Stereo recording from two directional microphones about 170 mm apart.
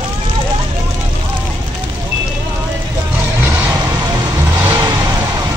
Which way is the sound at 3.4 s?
10° right (ahead or behind).